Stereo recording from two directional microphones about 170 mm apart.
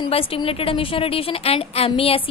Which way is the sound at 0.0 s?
35° left (ahead or behind).